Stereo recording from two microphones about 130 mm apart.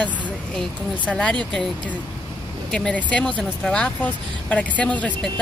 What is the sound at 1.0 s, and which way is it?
Speech, 10° left (ahead or behind).